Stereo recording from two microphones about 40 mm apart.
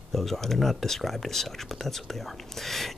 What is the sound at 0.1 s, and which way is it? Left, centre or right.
Speech, centre.